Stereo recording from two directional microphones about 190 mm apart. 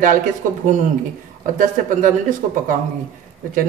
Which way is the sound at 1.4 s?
45° right (ahead or behind).